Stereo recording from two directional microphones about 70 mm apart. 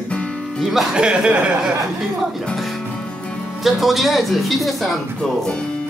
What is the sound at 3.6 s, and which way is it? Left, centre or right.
A woman's voice, centre.